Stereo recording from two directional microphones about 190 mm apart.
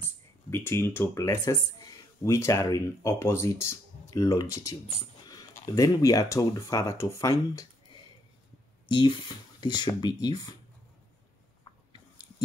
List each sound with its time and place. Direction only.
0.0 s speech: 10° left (ahead or behind)
9.6 s speech: 25° left (ahead or behind)